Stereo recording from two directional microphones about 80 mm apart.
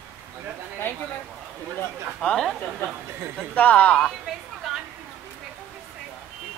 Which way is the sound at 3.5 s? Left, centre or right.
Centre.